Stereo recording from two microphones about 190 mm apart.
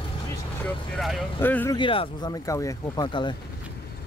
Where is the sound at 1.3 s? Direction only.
10° left (ahead or behind).